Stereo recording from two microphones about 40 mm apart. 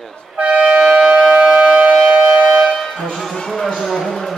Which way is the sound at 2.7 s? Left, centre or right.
Centre.